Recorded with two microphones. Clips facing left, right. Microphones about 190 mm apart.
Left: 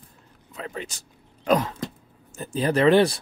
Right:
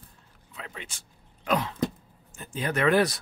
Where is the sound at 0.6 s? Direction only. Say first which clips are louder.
Left 8 dB; 40° left (ahead or behind).